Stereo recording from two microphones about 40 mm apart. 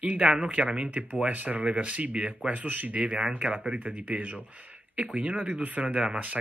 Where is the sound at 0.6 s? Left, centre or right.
Right.